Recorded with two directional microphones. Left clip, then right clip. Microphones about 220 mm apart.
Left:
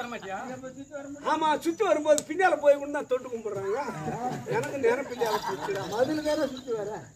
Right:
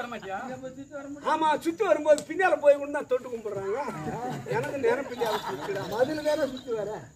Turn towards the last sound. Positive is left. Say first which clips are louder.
# right 1 dB
turn(degrees=5)  # may be behind; listen again after turning